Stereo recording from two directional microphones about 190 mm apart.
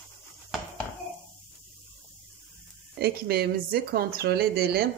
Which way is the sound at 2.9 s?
55° right (ahead or behind).